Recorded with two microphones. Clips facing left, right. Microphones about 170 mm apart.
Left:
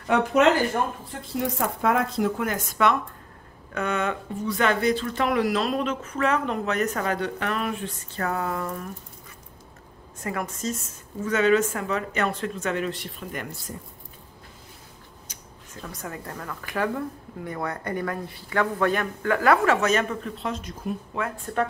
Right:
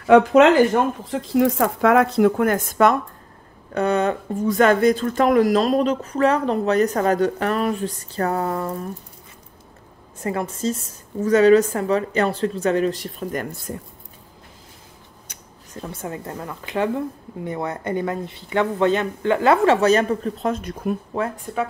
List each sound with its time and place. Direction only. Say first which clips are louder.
0.0 s speech: right 7 dB; 90° right; by 3.0 s 45° right (ahead or behind)
3.7 s speech: right 7 dB; 35° right (ahead or behind)
10.2 s a woman's voice: right 6 dB; 30° right (ahead or behind)
15.3 s a sound: right 2 dB; 65° right (ahead or behind)
15.7 s a woman's voice: right 6 dB; 25° right (ahead or behind); by 20.9 s 55° right (ahead or behind)
21.2 s speech: right 4 dB; 35° right (ahead or behind)